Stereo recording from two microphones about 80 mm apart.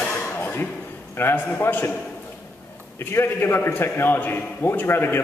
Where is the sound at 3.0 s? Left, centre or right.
Left.